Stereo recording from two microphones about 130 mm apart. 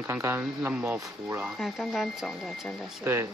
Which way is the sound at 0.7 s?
15° right (ahead or behind).